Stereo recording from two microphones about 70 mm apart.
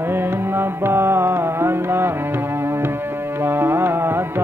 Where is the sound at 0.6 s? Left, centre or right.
Right.